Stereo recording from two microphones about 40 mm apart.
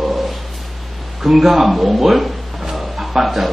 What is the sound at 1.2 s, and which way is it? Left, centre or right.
Speech, centre.